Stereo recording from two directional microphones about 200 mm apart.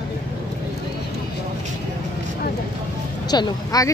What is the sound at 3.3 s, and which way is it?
Speech, 20° left (ahead or behind).